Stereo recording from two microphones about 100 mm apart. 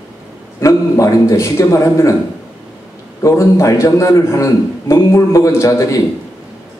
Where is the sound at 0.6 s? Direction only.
30° left (ahead or behind).